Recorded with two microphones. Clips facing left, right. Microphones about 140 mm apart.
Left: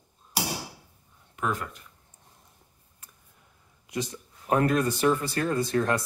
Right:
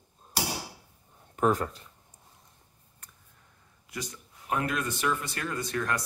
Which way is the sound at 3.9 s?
20° left (ahead or behind).